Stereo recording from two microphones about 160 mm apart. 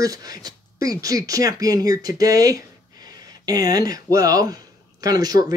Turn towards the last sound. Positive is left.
turn(degrees=-25)  # may be behind; listen again after turning